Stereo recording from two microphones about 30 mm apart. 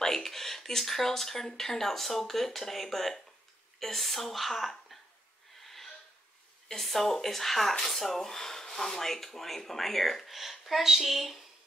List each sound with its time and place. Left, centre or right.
0.0 s speech: centre
5.6 s wheeze: centre
6.8 s speech: centre
8.0 s speech: centre
8.3 s speech: centre